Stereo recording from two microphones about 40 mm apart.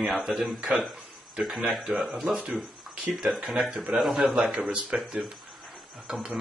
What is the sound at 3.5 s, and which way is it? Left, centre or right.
Speech, centre.